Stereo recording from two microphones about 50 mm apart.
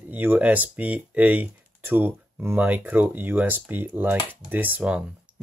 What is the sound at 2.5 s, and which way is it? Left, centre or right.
Speech, right.